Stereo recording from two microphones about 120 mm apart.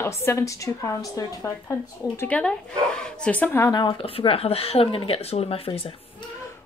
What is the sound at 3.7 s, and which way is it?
Speech, 35° left (ahead or behind).